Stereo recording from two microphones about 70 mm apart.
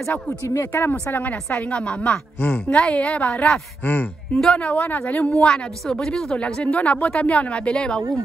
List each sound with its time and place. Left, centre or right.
0.5 s speech: left
5.3 s speech: centre